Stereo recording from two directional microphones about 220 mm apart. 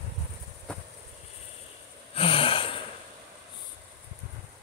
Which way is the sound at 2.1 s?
25° left (ahead or behind).